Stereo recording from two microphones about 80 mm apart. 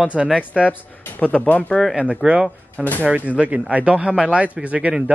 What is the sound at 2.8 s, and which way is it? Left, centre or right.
Speech, left.